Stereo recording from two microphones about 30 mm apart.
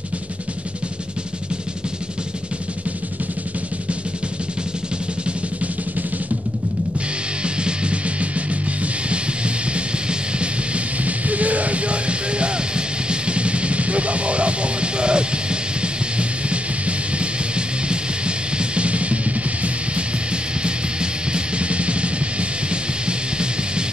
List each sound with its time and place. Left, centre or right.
7.4 s music: right
11.1 s music: right
20.6 s music: right